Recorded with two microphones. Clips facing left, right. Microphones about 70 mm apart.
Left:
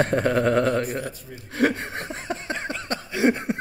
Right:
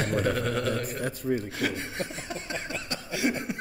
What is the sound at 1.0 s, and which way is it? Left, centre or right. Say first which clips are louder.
Speech: right 7 dB; right.